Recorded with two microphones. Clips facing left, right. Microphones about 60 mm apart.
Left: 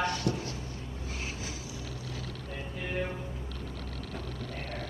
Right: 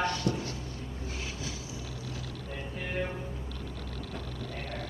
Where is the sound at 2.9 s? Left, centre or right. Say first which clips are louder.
Even; centre.